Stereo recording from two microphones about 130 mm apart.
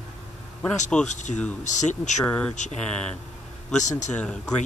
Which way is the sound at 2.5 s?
70° left (ahead or behind).